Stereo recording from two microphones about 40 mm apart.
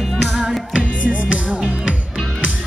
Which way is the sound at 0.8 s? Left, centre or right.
Left.